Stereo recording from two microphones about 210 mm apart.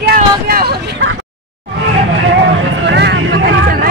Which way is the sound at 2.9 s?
55° right (ahead or behind).